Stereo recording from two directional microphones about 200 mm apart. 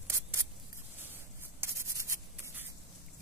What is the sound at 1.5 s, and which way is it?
Sanding, 15° right (ahead or behind).